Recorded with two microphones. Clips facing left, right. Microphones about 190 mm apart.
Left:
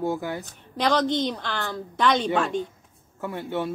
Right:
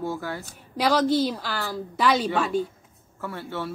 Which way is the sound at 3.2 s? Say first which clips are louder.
Left 4 dB; 15° left (ahead or behind).